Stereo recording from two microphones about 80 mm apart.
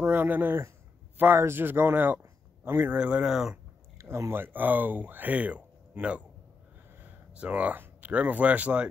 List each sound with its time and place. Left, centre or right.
0.0 s speech: right
3.0 s speech: centre
4.0 s speech: right; by 8.8 s centre